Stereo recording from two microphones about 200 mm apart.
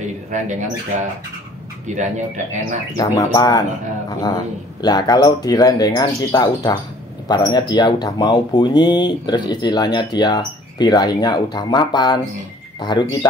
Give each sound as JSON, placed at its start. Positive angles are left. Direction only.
{"t": 0.3, "sound": "speech", "side_deg": -40}
{"t": 3.0, "sound": "speech", "side_deg": 15}
{"t": 4.8, "sound": "speech", "side_deg": 20}